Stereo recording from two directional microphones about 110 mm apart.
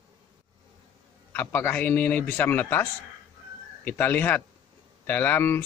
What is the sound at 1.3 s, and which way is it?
A man's voice, 15° left (ahead or behind).